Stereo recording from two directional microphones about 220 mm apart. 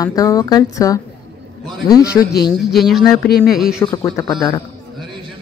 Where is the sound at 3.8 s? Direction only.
15° left (ahead or behind).